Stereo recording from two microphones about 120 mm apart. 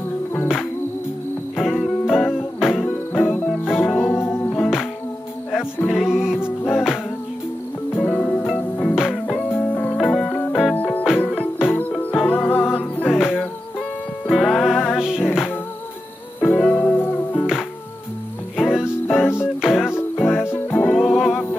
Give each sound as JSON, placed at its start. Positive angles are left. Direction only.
{"t": 1.6, "sound": "music", "side_deg": 0}
{"t": 4.1, "sound": "music", "side_deg": 20}
{"t": 4.6, "sound": "music", "side_deg": -5}
{"t": 5.9, "sound": "music", "side_deg": -5}
{"t": 8.0, "sound": "music", "side_deg": 10}
{"t": 8.8, "sound": "music", "side_deg": 0}
{"t": 9.5, "sound": "music", "side_deg": 15}
{"t": 9.9, "sound": "music", "side_deg": 5}
{"t": 10.8, "sound": "music", "side_deg": 15}
{"t": 13.1, "sound": "music", "side_deg": -5}
{"t": 16.3, "sound": "music", "side_deg": 15}
{"t": 18.6, "sound": "music", "side_deg": -5}